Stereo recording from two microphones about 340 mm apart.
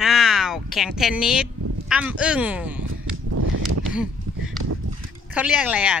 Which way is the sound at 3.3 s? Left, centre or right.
Right.